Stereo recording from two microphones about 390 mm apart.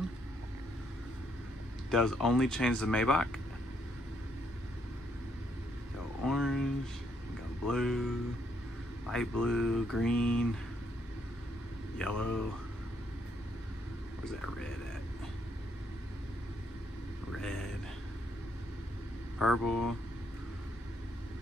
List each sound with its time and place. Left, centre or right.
1.9 s speech: centre
6.2 s a sound: centre
7.6 s speech: centre
9.1 s speech: centre
12.0 s speech: centre
17.4 s a sound: centre
19.3 s speech: centre
19.6 s speech: left